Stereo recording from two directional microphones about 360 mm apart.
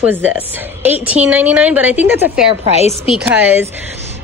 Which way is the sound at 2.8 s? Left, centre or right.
Centre.